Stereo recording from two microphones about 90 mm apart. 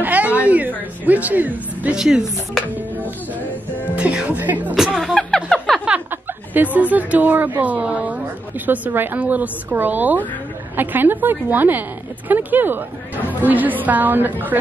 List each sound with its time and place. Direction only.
0.0 s a sound: 20° right (ahead or behind)
0.4 s speech: 15° right (ahead or behind)
2.0 s speech: 5° right (ahead or behind)
3.9 s speech: 15° right (ahead or behind)
4.7 s speech: 5° right (ahead or behind)
5.1 s a sound: 5° left (ahead or behind)
6.5 s a woman's voice: 20° right (ahead or behind)